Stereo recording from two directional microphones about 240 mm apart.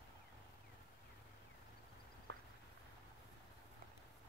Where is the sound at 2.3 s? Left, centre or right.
Right.